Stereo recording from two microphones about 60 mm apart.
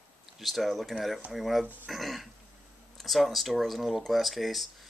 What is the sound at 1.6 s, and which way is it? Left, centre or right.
Speech, right.